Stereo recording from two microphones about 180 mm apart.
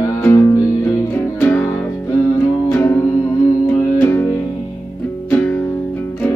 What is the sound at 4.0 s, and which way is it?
Music, 10° left (ahead or behind).